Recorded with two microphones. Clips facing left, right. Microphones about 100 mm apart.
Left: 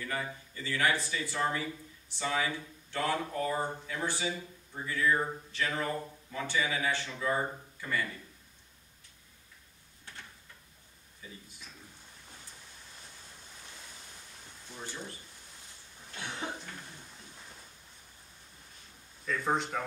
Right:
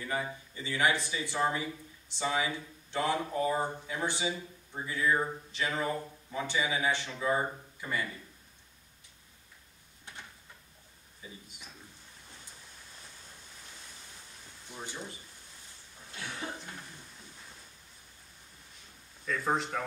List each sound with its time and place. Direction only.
0.0 s speech: 20° right (ahead or behind)
10.1 s a sound: 15° right (ahead or behind)
11.2 s a sound: 20° right (ahead or behind)
14.7 s speech: 15° right (ahead or behind)
16.2 s cough: 20° left (ahead or behind)
19.2 s speech: centre (ahead or behind)